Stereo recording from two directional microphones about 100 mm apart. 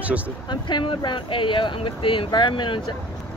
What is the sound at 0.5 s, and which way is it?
Speech, 50° left (ahead or behind).